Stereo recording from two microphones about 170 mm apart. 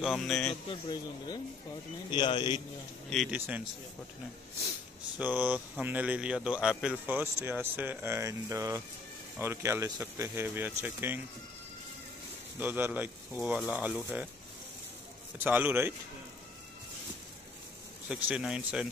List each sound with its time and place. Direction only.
0.0 s speech: centre (ahead or behind)
0.7 s speech: 25° left (ahead or behind)
3.1 s speech: centre (ahead or behind)
3.3 s speech: 10° right (ahead or behind)
5.2 s speech: 10° right (ahead or behind)
12.5 s speech: 10° right (ahead or behind)
15.3 s speech: 10° right (ahead or behind)
18.0 s speech: 5° right (ahead or behind)